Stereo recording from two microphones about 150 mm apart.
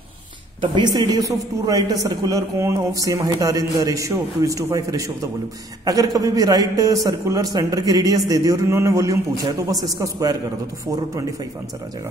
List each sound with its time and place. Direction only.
0.6 s a man's voice: 30° right (ahead or behind)